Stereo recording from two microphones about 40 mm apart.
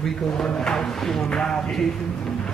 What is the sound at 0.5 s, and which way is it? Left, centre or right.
Speech, centre.